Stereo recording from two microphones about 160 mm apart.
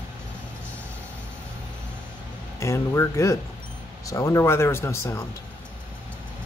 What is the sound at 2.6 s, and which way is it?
Speech, 20° left (ahead or behind).